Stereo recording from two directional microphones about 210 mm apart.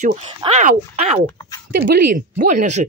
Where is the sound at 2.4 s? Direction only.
35° right (ahead or behind).